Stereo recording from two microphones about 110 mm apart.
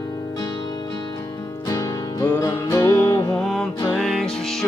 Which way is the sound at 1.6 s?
35° left (ahead or behind).